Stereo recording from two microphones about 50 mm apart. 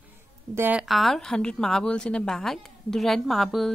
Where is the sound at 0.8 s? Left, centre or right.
Centre.